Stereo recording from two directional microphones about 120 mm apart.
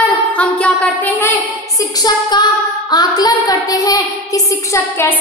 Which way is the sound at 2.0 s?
35° left (ahead or behind).